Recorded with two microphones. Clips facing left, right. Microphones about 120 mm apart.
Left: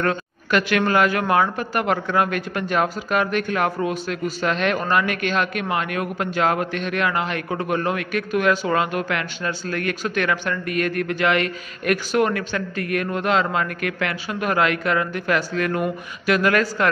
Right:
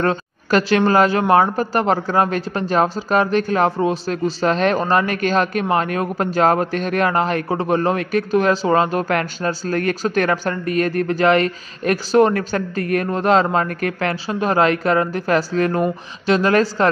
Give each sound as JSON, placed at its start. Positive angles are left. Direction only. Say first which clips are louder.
{"t": 0.0, "sound": "a man's voice", "louder": "right 3 dB", "side_deg": -35}